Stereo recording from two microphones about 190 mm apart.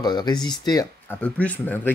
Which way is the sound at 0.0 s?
20° left (ahead or behind).